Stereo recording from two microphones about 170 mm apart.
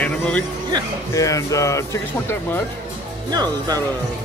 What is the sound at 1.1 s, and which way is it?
Speech, 20° left (ahead or behind).